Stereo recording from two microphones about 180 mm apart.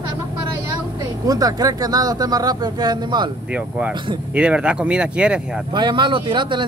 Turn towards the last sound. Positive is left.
turn(degrees=-25)  # may be behind; listen again after turning